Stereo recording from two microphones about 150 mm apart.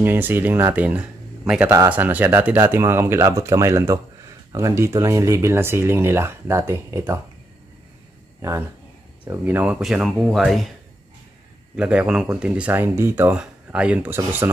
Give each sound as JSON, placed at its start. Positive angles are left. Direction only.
{"t": 0.0, "sound": "a man's voice", "side_deg": -15}
{"t": 8.4, "sound": "speech", "side_deg": -20}
{"t": 11.7, "sound": "speech", "side_deg": -5}